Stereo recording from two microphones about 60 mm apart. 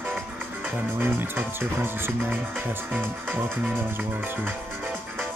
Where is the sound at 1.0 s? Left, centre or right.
Right.